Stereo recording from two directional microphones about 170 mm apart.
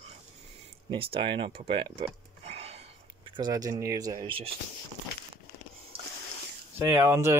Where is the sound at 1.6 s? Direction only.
30° right (ahead or behind).